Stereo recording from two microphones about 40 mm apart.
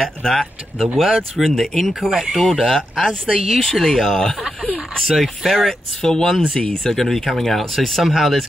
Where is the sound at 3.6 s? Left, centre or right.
Centre.